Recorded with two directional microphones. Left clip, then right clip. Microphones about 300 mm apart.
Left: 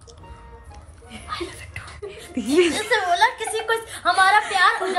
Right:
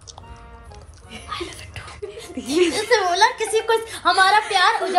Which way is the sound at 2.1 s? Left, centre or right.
Left.